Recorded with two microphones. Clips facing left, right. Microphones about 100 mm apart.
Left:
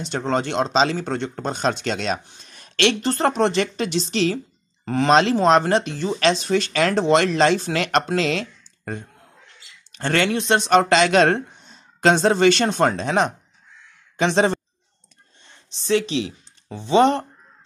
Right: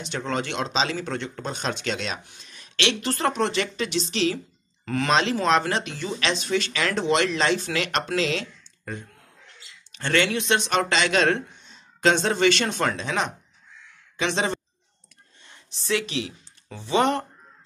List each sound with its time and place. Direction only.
0.0 s speech: 35° left (ahead or behind)
15.7 s speech: 30° left (ahead or behind)